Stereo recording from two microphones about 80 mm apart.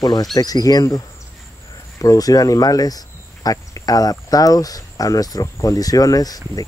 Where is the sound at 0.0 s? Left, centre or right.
Left.